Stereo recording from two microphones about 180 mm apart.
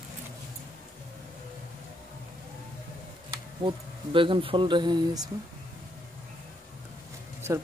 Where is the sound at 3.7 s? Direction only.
30° right (ahead or behind).